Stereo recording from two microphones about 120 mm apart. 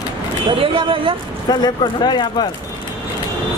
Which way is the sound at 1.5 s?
35° left (ahead or behind).